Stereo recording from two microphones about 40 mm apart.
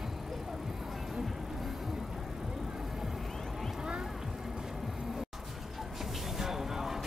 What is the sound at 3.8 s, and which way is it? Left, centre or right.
Vehicle, right.